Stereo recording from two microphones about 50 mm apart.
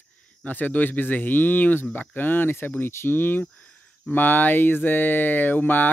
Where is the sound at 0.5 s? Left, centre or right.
Left.